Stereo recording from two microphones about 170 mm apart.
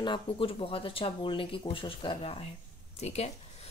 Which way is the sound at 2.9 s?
40° left (ahead or behind).